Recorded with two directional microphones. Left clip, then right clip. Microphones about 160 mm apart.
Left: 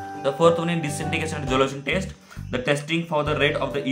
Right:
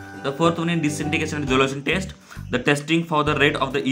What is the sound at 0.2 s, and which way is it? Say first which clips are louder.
Speech: left 2 dB; 5° right (ahead or behind).